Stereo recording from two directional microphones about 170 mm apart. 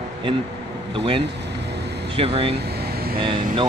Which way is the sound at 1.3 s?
85° right.